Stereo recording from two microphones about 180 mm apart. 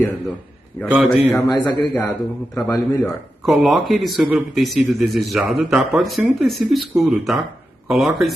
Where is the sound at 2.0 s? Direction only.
5° left (ahead or behind).